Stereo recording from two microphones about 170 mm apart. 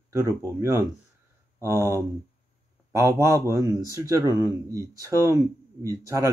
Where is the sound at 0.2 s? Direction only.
15° right (ahead or behind).